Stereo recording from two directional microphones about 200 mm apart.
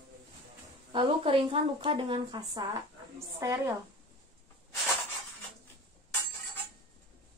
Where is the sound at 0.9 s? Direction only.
25° right (ahead or behind).